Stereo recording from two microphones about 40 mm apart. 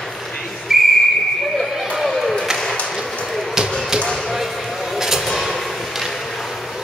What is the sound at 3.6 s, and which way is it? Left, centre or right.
Basketball bounce, centre.